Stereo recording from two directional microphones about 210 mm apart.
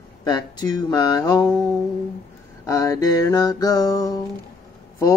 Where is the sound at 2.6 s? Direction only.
15° left (ahead or behind).